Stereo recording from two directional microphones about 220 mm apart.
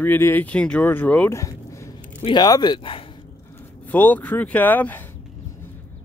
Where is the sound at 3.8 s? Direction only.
10° left (ahead or behind).